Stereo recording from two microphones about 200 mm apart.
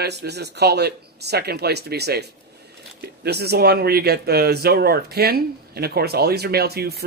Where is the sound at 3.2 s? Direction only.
55° right (ahead or behind).